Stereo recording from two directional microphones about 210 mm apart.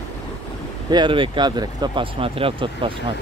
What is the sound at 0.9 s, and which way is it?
Speech, 25° right (ahead or behind).